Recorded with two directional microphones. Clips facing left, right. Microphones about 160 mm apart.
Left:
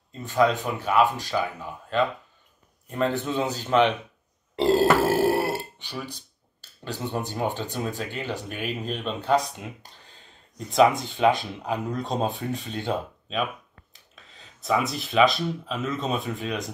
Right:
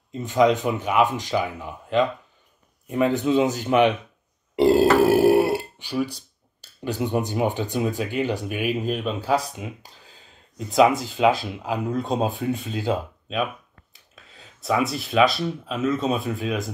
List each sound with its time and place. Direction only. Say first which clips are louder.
0.2 s speech: right 3 dB; 20° right (ahead or behind); by 16.7 s centre (ahead or behind)